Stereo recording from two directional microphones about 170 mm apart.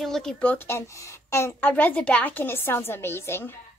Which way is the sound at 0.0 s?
Centre (ahead or behind).